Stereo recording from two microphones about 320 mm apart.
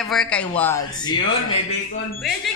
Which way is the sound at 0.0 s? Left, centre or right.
Centre.